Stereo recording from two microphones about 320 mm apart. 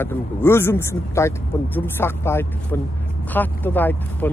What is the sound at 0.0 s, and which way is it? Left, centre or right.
Speech, centre.